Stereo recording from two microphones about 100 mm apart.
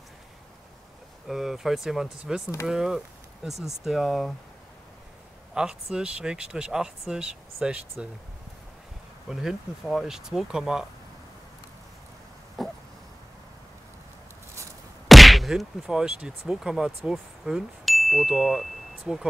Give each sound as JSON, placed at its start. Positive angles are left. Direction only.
{"t": 1.2, "sound": "speech", "side_deg": -5}
{"t": 5.5, "sound": "speech", "side_deg": -5}
{"t": 9.3, "sound": "speech", "side_deg": -5}
{"t": 12.6, "sound": "a sound", "side_deg": 0}
{"t": 15.0, "sound": "speech", "side_deg": 0}